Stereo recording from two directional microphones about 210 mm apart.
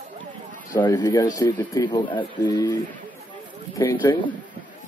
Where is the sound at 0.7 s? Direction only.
20° left (ahead or behind).